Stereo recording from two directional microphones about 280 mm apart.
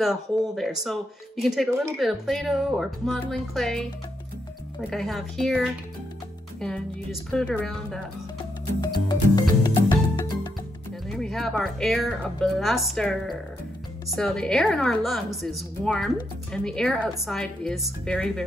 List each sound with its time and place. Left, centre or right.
0.0 s speech: centre
4.8 s speech: centre
8.8 s music: centre
11.1 s speech: centre